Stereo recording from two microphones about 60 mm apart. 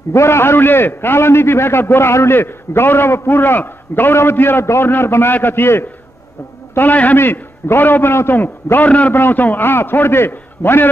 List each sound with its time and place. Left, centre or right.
0.1 s a man's voice: left
7.2 s a man's voice: left